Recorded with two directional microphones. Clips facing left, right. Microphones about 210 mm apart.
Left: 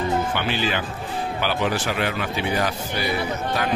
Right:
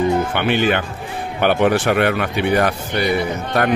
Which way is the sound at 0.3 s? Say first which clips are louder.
Right 7 dB; 60° right (ahead or behind).